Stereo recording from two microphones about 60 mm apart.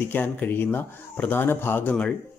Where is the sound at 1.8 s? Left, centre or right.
Centre.